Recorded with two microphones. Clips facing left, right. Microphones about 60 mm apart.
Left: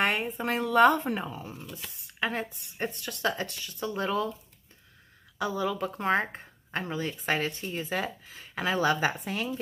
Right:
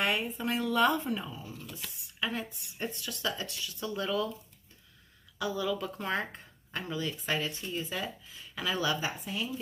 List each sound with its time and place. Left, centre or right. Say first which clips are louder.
0.0 s speech: left 3 dB; left
5.4 s speech: left 3 dB; left